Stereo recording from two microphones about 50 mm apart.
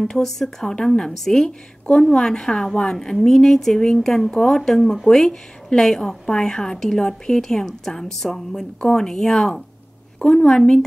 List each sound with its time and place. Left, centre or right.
0.0 s a woman's voice: centre